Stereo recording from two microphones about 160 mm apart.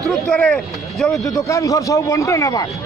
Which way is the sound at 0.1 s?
5° left (ahead or behind).